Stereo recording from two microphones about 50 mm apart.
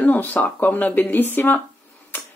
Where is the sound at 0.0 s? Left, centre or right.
Left.